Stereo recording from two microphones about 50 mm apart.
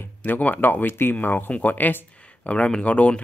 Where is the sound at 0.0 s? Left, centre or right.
Left.